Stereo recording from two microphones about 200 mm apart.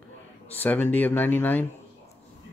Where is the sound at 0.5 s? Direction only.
10° left (ahead or behind).